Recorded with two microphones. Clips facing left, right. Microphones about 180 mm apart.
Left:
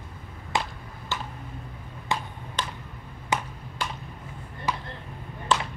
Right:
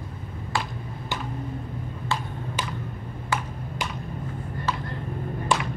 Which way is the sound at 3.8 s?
15° right (ahead or behind).